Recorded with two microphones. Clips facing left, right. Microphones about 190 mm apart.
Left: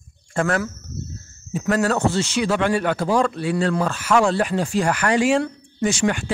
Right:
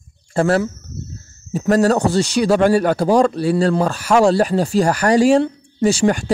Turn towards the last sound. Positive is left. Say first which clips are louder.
# right 5 dB
turn(degrees=-35)  # may be behind; listen again after turning